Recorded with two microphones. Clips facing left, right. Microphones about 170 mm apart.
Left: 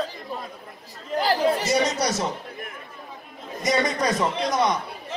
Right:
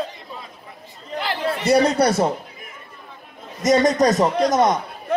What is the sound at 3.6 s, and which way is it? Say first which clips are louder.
A man's voice: right 7 dB; 45° right (ahead or behind).